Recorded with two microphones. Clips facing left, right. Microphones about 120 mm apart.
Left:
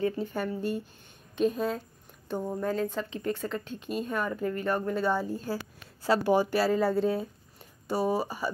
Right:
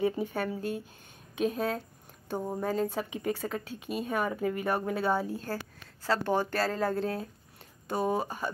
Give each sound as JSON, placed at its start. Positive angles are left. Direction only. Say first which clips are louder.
{"t": 0.0, "sound": "speech", "louder": "even", "side_deg": -15}
{"t": 0.3, "sound": "speech", "louder": "left 2 dB", "side_deg": 0}